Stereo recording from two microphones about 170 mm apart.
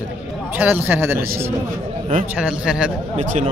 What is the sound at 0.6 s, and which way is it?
Speech, 10° right (ahead or behind).